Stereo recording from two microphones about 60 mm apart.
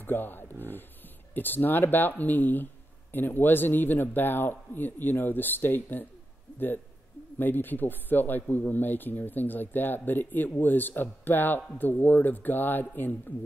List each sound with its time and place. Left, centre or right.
0.0 s speech: left
7.3 s speech: left